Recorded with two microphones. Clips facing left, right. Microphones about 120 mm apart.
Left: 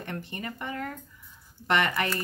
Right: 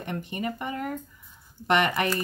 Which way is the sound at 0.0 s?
15° right (ahead or behind).